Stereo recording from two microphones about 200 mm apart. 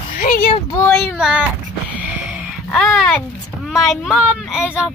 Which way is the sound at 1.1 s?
5° right (ahead or behind).